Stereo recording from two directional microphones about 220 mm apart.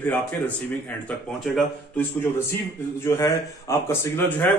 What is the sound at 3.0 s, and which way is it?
Speech, 10° left (ahead or behind).